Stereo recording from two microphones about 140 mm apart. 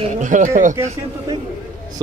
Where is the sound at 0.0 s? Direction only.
65° right (ahead or behind).